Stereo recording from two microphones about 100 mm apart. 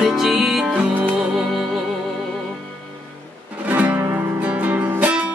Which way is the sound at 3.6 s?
20° right (ahead or behind).